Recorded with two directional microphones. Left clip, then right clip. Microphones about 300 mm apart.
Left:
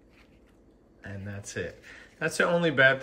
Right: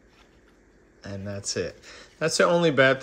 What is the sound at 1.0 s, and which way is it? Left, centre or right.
Speech, centre.